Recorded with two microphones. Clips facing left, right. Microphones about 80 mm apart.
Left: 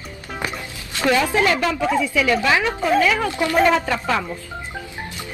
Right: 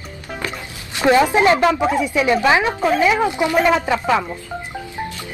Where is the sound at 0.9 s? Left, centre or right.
Right.